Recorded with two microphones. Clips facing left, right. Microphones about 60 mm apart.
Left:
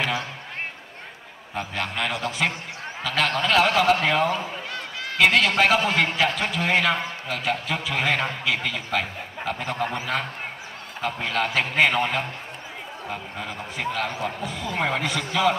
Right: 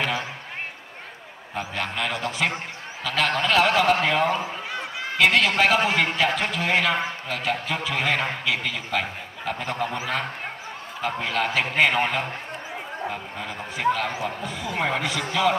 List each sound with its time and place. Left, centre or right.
1.5 s a man's voice: centre
4.3 s a sound: centre
5.1 s a man's voice: centre
13.1 s a man's voice: centre